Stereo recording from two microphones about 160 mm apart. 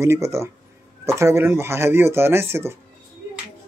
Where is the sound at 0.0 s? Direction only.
20° right (ahead or behind).